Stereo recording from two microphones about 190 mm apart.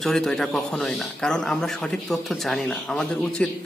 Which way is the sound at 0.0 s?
Centre (ahead or behind).